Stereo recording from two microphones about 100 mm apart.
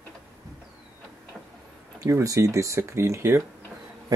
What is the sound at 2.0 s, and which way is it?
Speech, 30° right (ahead or behind).